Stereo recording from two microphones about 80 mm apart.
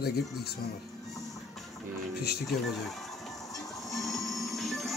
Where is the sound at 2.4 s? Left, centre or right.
Centre.